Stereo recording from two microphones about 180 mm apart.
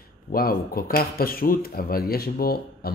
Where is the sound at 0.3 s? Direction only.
55° left (ahead or behind).